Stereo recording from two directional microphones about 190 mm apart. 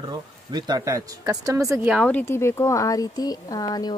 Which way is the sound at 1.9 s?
5° left (ahead or behind).